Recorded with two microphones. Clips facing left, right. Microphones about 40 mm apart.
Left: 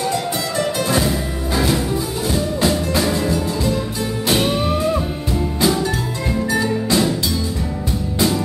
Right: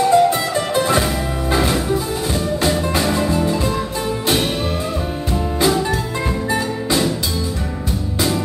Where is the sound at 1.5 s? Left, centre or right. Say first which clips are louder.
Right 1 dB; right.